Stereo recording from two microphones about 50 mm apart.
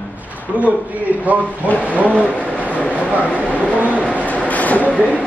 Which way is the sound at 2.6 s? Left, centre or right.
Left.